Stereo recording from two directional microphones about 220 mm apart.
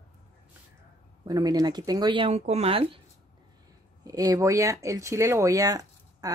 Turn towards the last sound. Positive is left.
turn(degrees=-15)  # may be behind; listen again after turning